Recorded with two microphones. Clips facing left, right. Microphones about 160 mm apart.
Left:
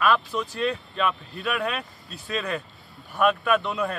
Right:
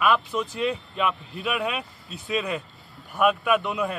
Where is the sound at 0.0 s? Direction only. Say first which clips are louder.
Even; 15° right (ahead or behind).